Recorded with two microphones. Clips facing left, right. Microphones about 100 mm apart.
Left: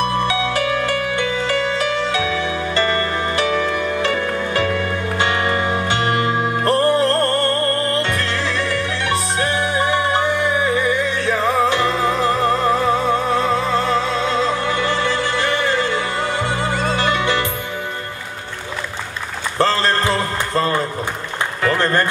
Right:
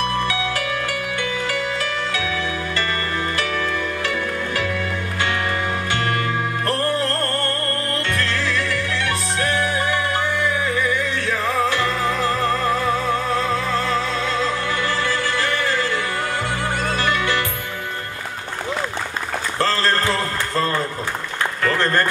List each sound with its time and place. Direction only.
0.3 s music: 25° left (ahead or behind)
4.1 s music: 35° left (ahead or behind)
5.2 s music: 25° left (ahead or behind)
19.6 s run: 20° left (ahead or behind)
20.5 s a sound: 20° left (ahead or behind)